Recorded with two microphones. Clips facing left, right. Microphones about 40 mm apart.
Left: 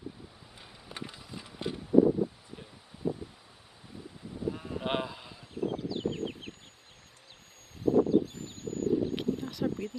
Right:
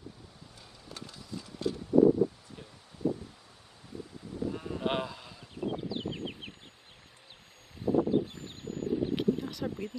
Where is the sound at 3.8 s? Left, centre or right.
Centre.